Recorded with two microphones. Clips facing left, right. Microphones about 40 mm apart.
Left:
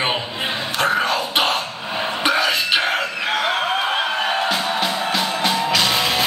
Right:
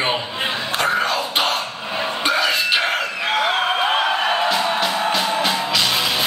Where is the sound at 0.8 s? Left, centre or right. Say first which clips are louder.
Left 1 dB; centre.